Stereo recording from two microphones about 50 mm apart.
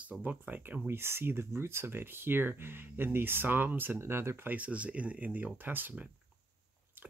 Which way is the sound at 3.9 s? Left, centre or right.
Right.